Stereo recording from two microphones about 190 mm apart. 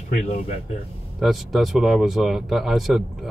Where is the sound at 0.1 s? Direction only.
35° left (ahead or behind).